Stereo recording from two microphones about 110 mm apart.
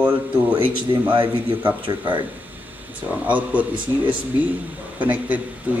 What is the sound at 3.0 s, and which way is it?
Speech, 15° right (ahead or behind).